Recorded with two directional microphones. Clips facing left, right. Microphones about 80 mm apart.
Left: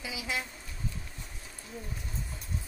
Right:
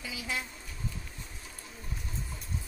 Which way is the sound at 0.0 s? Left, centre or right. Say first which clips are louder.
Left 1 dB; centre.